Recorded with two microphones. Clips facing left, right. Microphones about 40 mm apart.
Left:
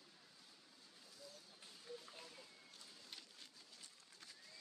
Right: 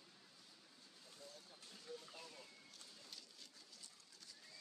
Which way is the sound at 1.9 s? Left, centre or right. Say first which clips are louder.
Right 1 dB; centre.